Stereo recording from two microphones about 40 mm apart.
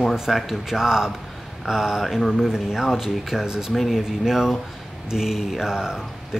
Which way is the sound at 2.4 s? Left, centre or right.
Centre.